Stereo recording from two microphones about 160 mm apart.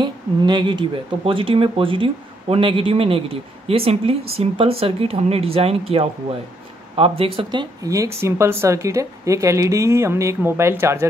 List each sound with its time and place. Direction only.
0.0 s speech: 30° right (ahead or behind)
7.8 s speech: 20° right (ahead or behind)